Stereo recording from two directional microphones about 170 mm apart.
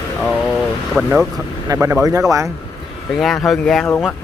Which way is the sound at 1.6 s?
15° right (ahead or behind).